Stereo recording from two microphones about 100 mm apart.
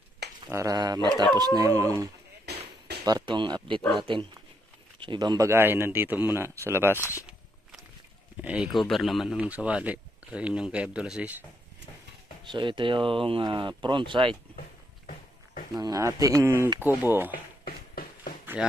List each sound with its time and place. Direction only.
0.5 s speech: 30° right (ahead or behind)
0.7 s speech: 40° right (ahead or behind)
3.0 s a sound: 35° right (ahead or behind)
3.3 s speech: 50° right (ahead or behind)
5.5 s speech: 25° right (ahead or behind)
8.4 s speech: 15° right (ahead or behind)
8.6 s a man's voice: centre (ahead or behind)
12.4 s speech: 55° right (ahead or behind)
15.8 s speech: 35° right (ahead or behind); by 17.3 s 20° right (ahead or behind)
18.6 s speech: 10° right (ahead or behind)